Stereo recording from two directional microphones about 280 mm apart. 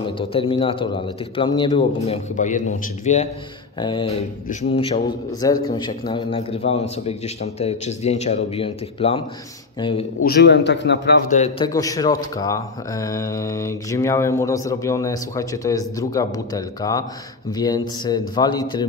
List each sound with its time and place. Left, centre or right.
0.3 s a man's voice: centre
10.2 s a man's voice: left; by 18.9 s centre